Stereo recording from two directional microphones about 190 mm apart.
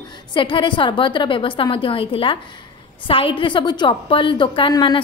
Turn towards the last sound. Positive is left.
turn(degrees=25)  # may be behind; listen again after turning